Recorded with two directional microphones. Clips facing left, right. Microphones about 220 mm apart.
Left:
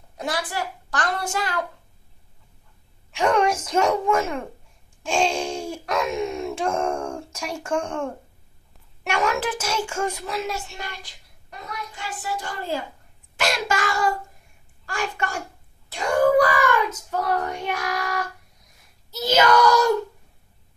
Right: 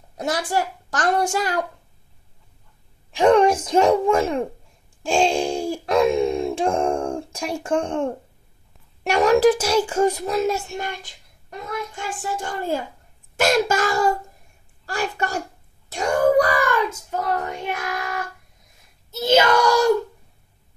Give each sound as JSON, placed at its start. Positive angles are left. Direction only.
{"t": 0.2, "sound": "a child's voice", "side_deg": -45}
{"t": 3.1, "sound": "a child's voice", "side_deg": -30}
{"t": 5.0, "sound": "a sound", "side_deg": -35}
{"t": 9.0, "sound": "a child's voice", "side_deg": -35}
{"t": 17.5, "sound": "speech", "side_deg": -20}